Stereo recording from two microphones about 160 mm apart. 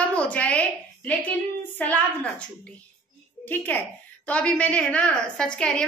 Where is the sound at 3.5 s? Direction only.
10° left (ahead or behind).